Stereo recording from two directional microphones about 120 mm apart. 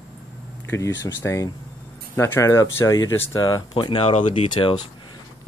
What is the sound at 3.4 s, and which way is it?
Speech, 35° left (ahead or behind).